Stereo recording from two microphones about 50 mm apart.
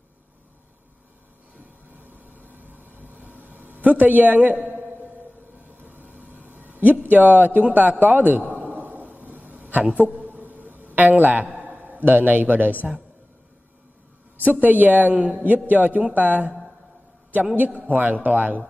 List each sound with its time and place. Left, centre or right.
2.4 s vehicle: right
3.4 s a man's voice: right
6.7 s speech: right
8.0 s a sound: right
11.0 s a man's voice: right
14.4 s speech: right
17.6 s speech: right